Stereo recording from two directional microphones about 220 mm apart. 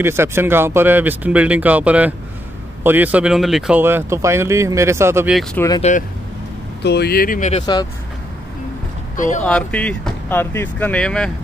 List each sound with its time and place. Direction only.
0.0 s speech: 10° right (ahead or behind)
5.8 s speech: 35° left (ahead or behind)
6.8 s speech: 50° left (ahead or behind)
9.1 s speech: 35° left (ahead or behind)
9.4 s speech: 5° left (ahead or behind)